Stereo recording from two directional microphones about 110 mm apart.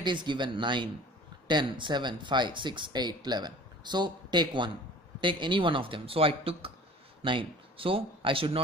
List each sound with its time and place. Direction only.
0.0 s speech: 45° right (ahead or behind)